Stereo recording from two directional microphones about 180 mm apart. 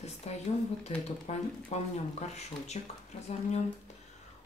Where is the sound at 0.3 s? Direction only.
35° left (ahead or behind).